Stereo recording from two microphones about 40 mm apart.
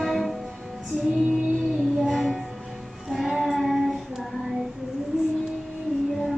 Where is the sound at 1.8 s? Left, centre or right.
Centre.